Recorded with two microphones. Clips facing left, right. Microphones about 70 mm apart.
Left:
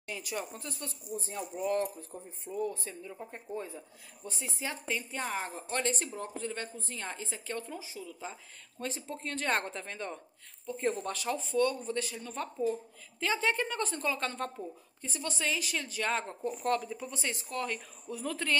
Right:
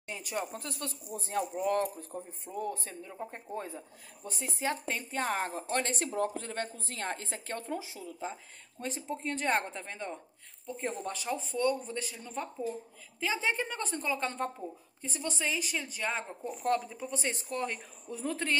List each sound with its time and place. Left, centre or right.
0.1 s speech: right
0.7 s speech: right
1.1 s speech: right
7.6 s speech: right
8.1 s speech: right
9.0 s a woman's voice: centre
15.8 s a woman's voice: centre